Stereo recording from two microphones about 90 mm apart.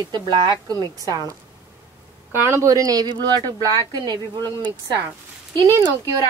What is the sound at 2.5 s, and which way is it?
Speech, 40° right (ahead or behind).